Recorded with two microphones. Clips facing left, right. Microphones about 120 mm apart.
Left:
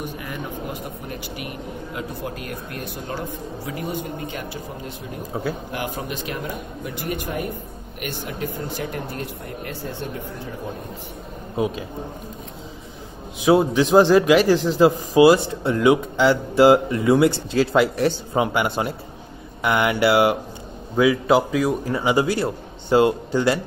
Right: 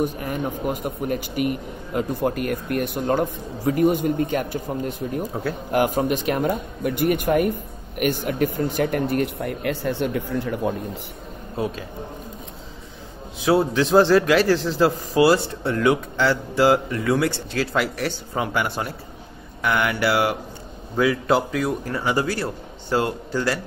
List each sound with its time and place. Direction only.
0.0 s speech: 45° right (ahead or behind)
5.3 s a man's voice: 10° left (ahead or behind)
5.7 s speech: 45° right (ahead or behind); by 10.7 s 85° right
11.5 s a man's voice: 15° left (ahead or behind)
13.5 s a man's voice: 15° left (ahead or behind)